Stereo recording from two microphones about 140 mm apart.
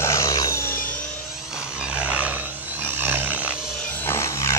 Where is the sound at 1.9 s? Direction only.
10° right (ahead or behind).